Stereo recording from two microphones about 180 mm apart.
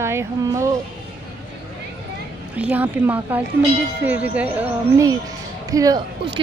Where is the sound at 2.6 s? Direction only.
10° right (ahead or behind).